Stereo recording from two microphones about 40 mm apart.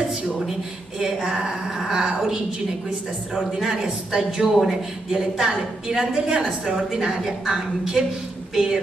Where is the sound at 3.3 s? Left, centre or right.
Centre.